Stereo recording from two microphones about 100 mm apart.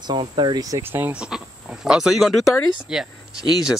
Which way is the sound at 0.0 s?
50° right (ahead or behind).